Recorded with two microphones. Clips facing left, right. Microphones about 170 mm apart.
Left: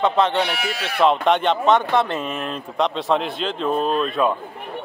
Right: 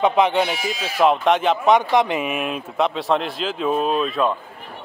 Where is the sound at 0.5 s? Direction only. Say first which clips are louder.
Right 1 dB; 65° left (ahead or behind).